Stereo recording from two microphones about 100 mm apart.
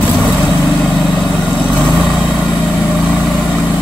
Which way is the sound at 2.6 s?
15° left (ahead or behind).